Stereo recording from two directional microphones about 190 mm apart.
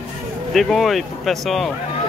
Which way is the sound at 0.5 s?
Centre (ahead or behind).